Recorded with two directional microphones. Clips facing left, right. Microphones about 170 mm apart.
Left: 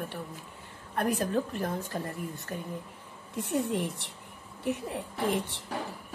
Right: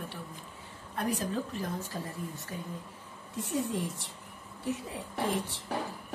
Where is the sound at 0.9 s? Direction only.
55° left (ahead or behind).